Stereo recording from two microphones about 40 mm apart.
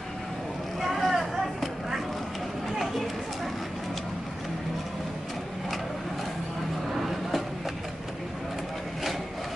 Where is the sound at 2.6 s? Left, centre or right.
Centre.